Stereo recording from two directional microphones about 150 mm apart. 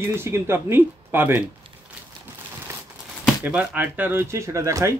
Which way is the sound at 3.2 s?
10° right (ahead or behind).